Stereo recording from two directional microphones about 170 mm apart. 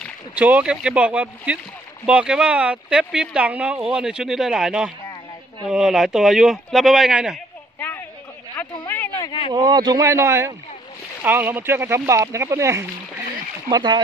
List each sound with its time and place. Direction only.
0.4 s speech: 10° right (ahead or behind)
8.8 s a sound: 10° left (ahead or behind)
9.5 s speech: 25° right (ahead or behind)